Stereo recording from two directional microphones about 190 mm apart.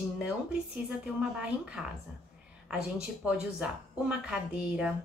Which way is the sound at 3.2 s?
5° right (ahead or behind).